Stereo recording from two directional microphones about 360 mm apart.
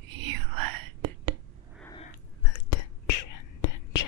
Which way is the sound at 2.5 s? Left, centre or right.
Left.